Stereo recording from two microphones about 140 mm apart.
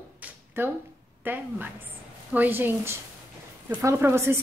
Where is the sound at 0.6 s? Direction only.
15° right (ahead or behind).